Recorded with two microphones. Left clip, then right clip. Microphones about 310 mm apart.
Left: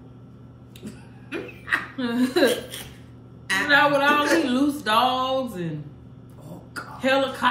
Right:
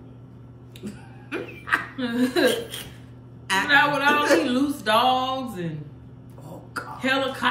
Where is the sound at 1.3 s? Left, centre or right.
Centre.